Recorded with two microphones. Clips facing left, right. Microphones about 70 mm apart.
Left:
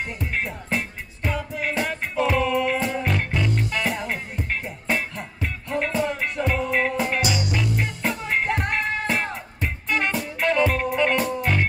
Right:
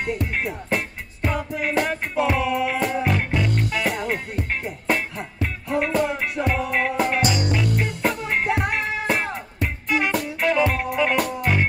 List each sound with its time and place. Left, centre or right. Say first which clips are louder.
0.0 s music: right 3 dB; centre
7.2 s music: right 3 dB; right
7.7 s music: right 3 dB; centre